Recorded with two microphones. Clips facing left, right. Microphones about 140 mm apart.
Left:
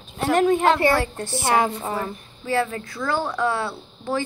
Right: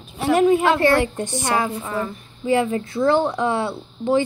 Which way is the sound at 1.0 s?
20° right (ahead or behind).